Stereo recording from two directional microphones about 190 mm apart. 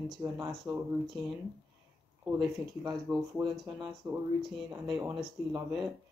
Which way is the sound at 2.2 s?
15° right (ahead or behind).